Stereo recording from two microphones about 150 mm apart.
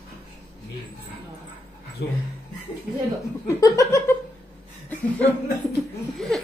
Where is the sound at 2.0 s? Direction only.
90° left.